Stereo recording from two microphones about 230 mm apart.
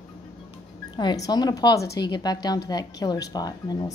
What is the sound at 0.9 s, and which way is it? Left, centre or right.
Speech, centre.